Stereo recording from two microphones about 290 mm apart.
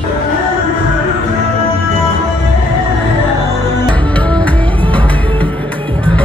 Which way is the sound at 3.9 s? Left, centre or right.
Centre.